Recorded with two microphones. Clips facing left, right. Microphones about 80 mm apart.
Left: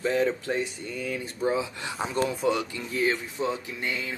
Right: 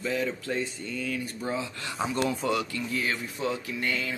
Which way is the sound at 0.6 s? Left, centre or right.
Centre.